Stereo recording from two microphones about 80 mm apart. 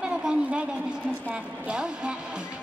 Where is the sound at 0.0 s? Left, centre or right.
Centre.